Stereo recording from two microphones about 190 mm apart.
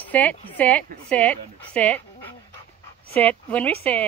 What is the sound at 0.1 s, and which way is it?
A woman's voice, 10° left (ahead or behind).